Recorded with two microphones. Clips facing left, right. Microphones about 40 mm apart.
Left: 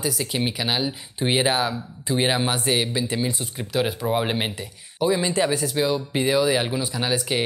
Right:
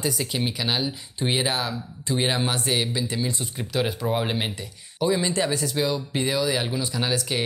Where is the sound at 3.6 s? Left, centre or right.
Centre.